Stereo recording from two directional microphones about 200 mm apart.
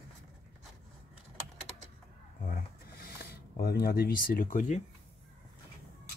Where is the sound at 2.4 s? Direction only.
45° left (ahead or behind).